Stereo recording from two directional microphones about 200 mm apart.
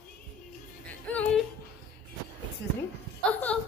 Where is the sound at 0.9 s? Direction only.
5° left (ahead or behind).